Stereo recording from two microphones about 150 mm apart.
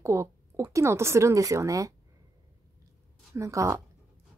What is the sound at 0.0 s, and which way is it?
Speech, 20° right (ahead or behind).